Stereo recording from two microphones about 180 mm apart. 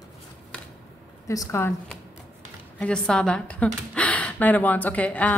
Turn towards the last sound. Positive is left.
turn(degrees=10)  # may be behind; listen again after turning